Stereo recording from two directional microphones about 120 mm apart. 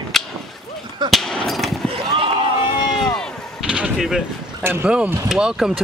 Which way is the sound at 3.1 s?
5° right (ahead or behind).